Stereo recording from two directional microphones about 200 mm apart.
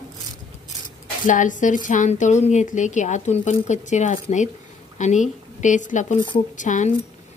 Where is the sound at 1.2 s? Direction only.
40° left (ahead or behind).